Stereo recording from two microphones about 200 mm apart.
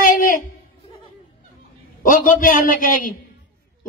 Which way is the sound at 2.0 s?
45° left (ahead or behind).